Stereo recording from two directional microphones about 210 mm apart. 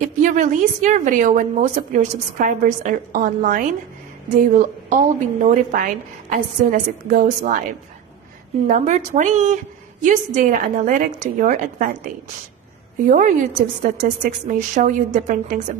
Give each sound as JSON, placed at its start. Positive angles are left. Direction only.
{"t": 0.0, "sound": "a woman's voice", "side_deg": -35}
{"t": 8.6, "sound": "a woman's voice", "side_deg": -35}
{"t": 13.1, "sound": "a woman's voice", "side_deg": -35}